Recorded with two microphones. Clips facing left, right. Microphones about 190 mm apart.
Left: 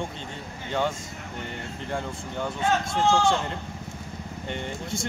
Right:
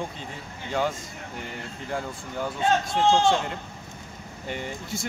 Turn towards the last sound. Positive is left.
turn(degrees=-5)  # may be behind; listen again after turning